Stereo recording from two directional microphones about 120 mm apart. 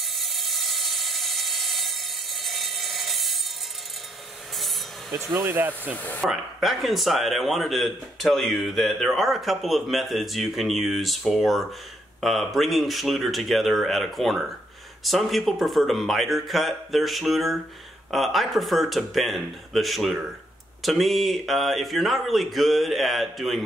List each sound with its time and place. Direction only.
0.0 s a sound: centre (ahead or behind)
5.4 s speech: 15° right (ahead or behind)
5.9 s speech: 15° left (ahead or behind)
6.2 s speech: centre (ahead or behind)